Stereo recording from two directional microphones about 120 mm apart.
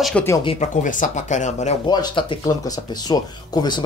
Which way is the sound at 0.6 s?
90° left.